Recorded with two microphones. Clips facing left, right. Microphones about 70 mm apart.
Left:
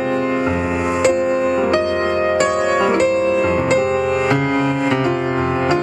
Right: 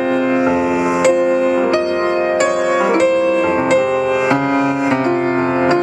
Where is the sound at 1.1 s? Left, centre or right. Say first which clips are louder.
Right 3 dB; right.